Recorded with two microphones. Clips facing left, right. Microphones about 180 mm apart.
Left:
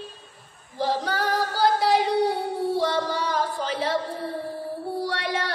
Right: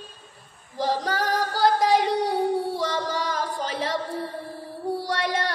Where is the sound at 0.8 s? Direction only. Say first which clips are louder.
Even; 45° right (ahead or behind).